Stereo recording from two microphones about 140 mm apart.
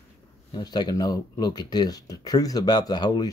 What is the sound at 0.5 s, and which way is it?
Speech, 30° left (ahead or behind).